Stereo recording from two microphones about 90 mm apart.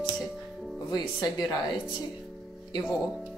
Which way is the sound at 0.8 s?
50° left (ahead or behind).